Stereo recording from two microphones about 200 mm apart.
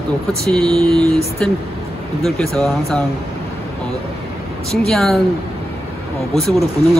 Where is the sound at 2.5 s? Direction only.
5° left (ahead or behind).